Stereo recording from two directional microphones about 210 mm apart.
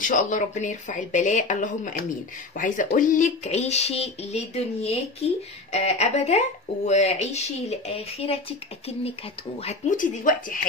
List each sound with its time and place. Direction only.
0.0 s speech: 40° left (ahead or behind)
9.6 s speech: 35° left (ahead or behind)